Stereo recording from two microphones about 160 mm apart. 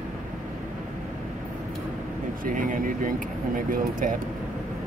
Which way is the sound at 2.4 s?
55° right (ahead or behind).